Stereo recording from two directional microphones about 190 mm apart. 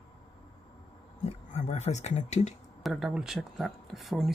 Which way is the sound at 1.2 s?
40° left (ahead or behind).